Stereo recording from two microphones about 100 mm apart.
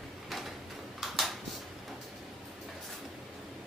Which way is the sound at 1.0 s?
Centre (ahead or behind).